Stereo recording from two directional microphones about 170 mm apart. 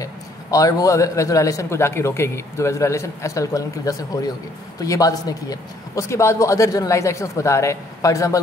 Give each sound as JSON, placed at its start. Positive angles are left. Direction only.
{"t": 0.0, "sound": "a man's voice", "side_deg": 20}